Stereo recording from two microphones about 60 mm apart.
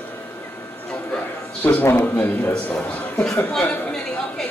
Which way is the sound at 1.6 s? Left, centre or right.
Left.